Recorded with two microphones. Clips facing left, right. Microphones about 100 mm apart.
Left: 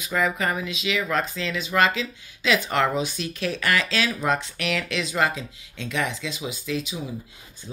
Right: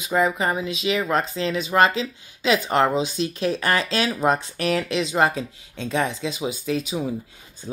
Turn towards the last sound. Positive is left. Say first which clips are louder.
# right 4 dB
turn(degrees=-35)  # may be behind; listen again after turning